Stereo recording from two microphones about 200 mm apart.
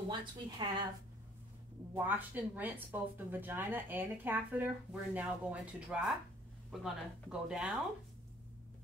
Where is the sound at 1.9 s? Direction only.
10° right (ahead or behind).